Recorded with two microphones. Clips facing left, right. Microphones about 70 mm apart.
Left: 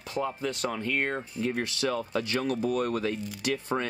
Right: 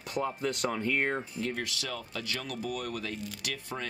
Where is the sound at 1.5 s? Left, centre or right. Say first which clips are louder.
Left 7 dB; left.